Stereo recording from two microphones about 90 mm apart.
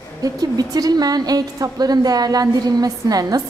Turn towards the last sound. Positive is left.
turn(degrees=-45)  # may be behind; listen again after turning